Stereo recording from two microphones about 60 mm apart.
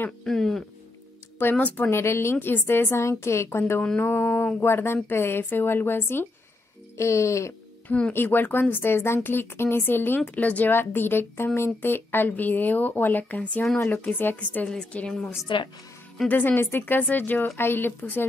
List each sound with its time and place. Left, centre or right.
0.2 s speech: centre
1.4 s speech: left
1.9 s a woman's voice: left
2.3 s a woman's voice: left
4.0 s mantra: left
4.6 s a woman's voice: left
7.0 s speech: left
8.1 s a woman's voice: left
10.7 s a woman's voice: left
14.7 s speech: centre
16.3 s a woman's voice: left